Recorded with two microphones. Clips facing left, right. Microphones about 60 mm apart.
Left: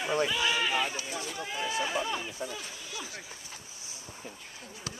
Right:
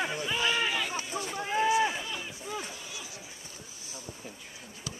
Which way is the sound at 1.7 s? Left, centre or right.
Centre.